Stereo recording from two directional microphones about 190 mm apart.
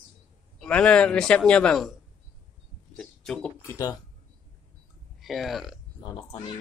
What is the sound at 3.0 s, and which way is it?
Speech, 5° left (ahead or behind).